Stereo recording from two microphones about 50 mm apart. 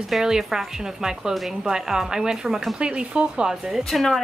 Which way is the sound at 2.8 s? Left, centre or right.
Right.